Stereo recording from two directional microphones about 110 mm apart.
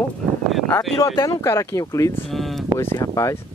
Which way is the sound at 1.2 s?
30° left (ahead or behind).